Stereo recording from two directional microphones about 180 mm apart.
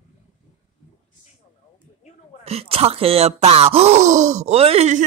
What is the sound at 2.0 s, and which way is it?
Hiccup, 40° left (ahead or behind).